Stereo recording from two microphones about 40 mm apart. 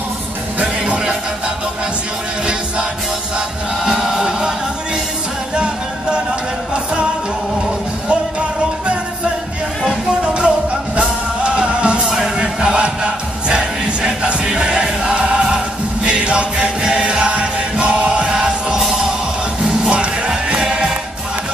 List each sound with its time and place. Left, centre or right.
0.6 s music: right
3.3 s music: right
5.6 s music: right
8.1 s music: right
12.0 s music: centre
12.4 s music: right
19.9 s music: right